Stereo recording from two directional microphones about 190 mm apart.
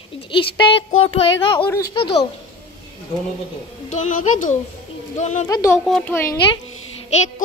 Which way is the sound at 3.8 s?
40° left (ahead or behind).